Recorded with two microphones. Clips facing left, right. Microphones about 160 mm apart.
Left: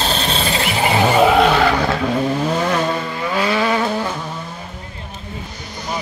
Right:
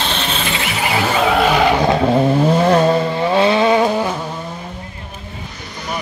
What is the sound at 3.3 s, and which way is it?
Vehicle, 25° right (ahead or behind).